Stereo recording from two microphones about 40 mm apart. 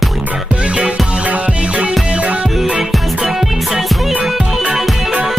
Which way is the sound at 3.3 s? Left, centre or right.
Centre.